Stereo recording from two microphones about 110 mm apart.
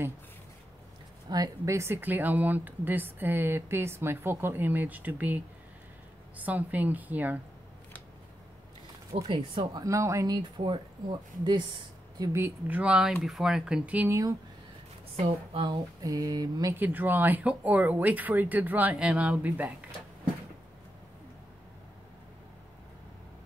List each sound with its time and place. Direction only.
1.3 s speech: 30° right (ahead or behind); by 7.3 s 15° right (ahead or behind)
9.1 s speech: 50° right (ahead or behind)
9.8 s speech: 30° right (ahead or behind); by 11.6 s 45° right (ahead or behind)
12.3 s speech: 20° right (ahead or behind)
15.2 s speech: 45° right (ahead or behind)
16.7 s speech: 15° right (ahead or behind)